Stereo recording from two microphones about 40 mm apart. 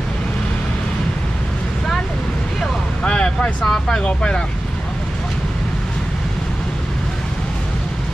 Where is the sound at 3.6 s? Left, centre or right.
Centre.